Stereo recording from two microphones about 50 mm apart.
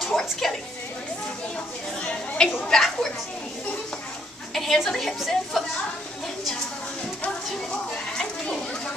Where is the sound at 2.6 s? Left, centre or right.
Centre.